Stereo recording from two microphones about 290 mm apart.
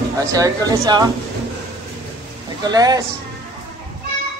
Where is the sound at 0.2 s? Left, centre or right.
Centre.